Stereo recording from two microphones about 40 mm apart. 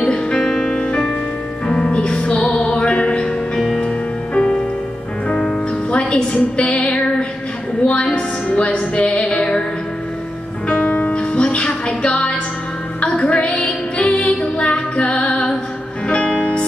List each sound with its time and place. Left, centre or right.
0.0 s music: left
0.4 s music: centre
0.7 s music: left
3.5 s music: centre
3.8 s music: left
5.9 s music: left
10.9 s music: left
11.1 s music: left
13.6 s music: left